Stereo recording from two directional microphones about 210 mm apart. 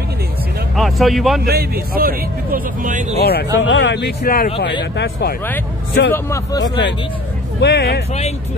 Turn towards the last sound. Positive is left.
turn(degrees=50)  # may be behind; listen again after turning